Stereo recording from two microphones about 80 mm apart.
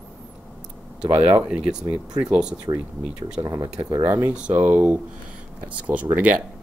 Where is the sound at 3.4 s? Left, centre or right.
Right.